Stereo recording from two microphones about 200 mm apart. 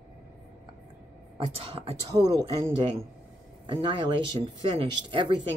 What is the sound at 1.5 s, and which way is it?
Speech, 30° right (ahead or behind).